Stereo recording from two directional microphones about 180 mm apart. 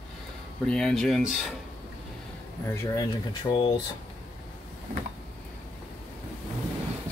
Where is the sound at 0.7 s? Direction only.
5° left (ahead or behind).